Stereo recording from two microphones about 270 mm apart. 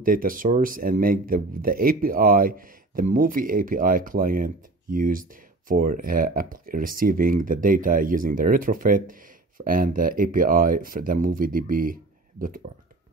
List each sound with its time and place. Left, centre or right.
0.0 s speech: right